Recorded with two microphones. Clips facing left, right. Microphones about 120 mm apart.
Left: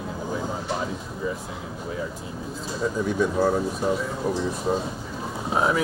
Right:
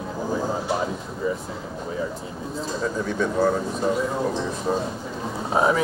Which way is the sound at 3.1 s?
10° left (ahead or behind).